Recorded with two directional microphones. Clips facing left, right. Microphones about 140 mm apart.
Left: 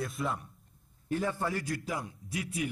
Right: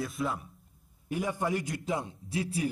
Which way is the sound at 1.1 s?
15° right (ahead or behind).